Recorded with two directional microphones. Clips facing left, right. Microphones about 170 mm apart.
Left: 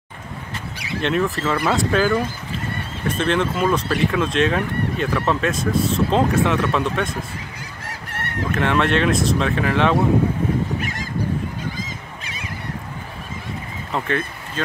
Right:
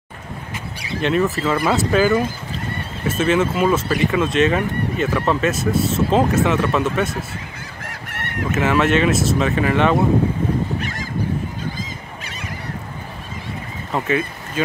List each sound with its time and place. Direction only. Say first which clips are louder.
1.0 s speech: right 2 dB; centre (ahead or behind)
8.5 s speech: right 2 dB; 5° right (ahead or behind)
13.9 s speech: right 3 dB; 5° right (ahead or behind)